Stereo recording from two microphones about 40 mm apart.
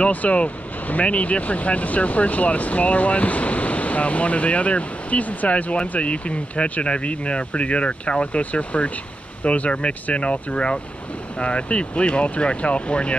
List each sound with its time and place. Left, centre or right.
0.0 s speech: left